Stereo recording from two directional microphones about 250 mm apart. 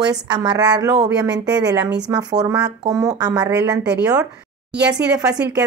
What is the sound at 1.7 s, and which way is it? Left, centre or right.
Speech, right.